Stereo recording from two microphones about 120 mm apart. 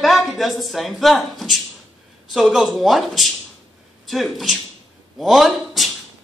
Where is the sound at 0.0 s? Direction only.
Centre (ahead or behind).